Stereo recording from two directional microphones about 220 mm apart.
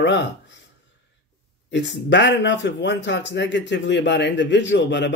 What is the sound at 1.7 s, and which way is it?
A man's voice, 55° left (ahead or behind).